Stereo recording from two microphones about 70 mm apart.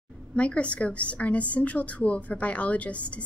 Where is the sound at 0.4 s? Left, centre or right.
Centre.